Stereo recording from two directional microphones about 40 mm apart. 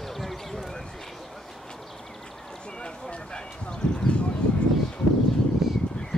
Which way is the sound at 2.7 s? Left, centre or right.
Left.